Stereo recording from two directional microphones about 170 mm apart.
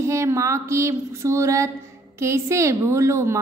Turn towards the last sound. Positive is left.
turn(degrees=-15)  # may be behind; listen again after turning